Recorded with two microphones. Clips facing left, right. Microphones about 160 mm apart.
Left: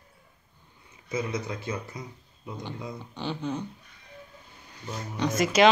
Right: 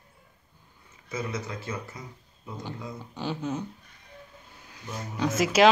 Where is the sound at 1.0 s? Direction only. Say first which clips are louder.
Left 3 dB; 15° left (ahead or behind).